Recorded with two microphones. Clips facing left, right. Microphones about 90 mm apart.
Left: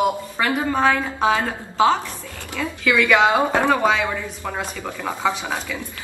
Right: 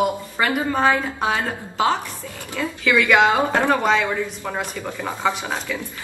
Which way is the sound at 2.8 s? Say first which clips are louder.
Even; 10° left (ahead or behind).